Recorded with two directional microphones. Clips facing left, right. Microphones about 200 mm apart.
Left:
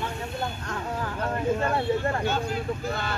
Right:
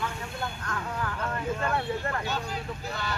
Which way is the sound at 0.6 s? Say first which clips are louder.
Left 2 dB; 25° left (ahead or behind).